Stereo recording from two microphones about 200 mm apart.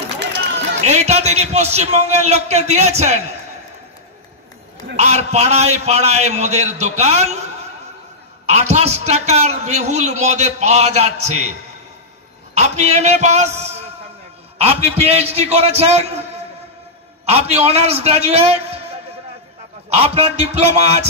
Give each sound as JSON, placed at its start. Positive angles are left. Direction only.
{"t": 0.8, "sound": "a man's voice", "side_deg": -35}
{"t": 4.9, "sound": "a man's voice", "side_deg": -35}
{"t": 8.5, "sound": "a man's voice", "side_deg": -35}
{"t": 12.5, "sound": "a man's voice", "side_deg": -35}
{"t": 17.3, "sound": "a man's voice", "side_deg": -30}
{"t": 19.9, "sound": "a man's voice", "side_deg": -30}